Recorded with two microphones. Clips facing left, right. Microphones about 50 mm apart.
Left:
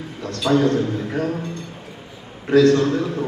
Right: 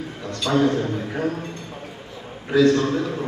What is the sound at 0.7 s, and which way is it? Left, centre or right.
Speech, centre.